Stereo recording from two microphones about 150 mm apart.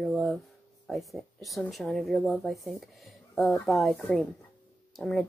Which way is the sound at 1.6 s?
Centre (ahead or behind).